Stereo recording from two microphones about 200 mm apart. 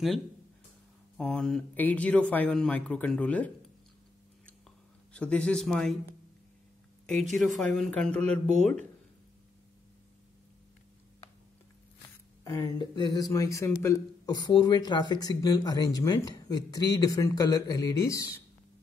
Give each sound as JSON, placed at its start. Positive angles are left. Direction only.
{"t": 1.1, "sound": "speech", "side_deg": 5}
{"t": 5.1, "sound": "speech", "side_deg": 5}
{"t": 7.3, "sound": "speech", "side_deg": 0}
{"t": 12.4, "sound": "speech", "side_deg": 20}